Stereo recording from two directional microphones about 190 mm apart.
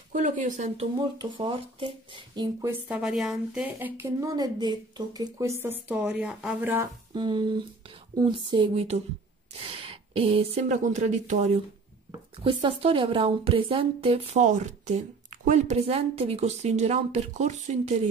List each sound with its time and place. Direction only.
0.1 s a woman's voice: 40° right (ahead or behind); by 2.7 s 20° right (ahead or behind)
2.9 s a woman's voice: centre (ahead or behind)
7.2 s a woman's voice: 25° right (ahead or behind)